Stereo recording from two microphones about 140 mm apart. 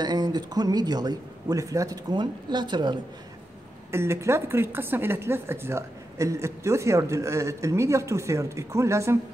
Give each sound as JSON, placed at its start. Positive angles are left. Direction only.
{"t": 0.0, "sound": "a woman's voice", "side_deg": -30}
{"t": 3.9, "sound": "a woman's voice", "side_deg": -20}